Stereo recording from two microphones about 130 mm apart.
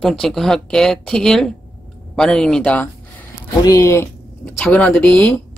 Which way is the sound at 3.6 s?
25° left (ahead or behind).